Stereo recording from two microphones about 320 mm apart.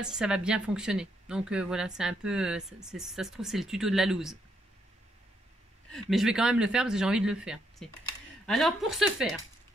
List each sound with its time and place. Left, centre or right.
0.0 s a woman's voice: centre
5.9 s a woman's voice: centre